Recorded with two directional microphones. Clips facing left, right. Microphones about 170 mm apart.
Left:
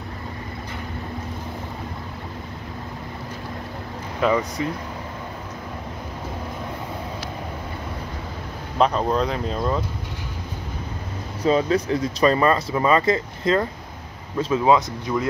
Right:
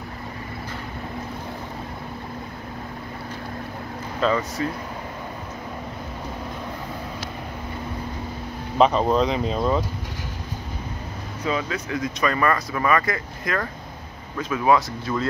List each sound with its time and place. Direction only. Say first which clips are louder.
4.2 s speech: left 2 dB; 15° left (ahead or behind)
8.7 s speech: right 2 dB; centre (ahead or behind)
11.4 s speech: left 7 dB; 35° left (ahead or behind); by 15.2 s 15° left (ahead or behind)